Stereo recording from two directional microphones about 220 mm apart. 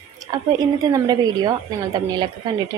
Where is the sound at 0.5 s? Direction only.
15° right (ahead or behind).